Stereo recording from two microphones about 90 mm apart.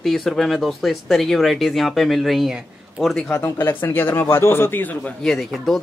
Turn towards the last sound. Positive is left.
turn(degrees=5)  # may be behind; listen again after turning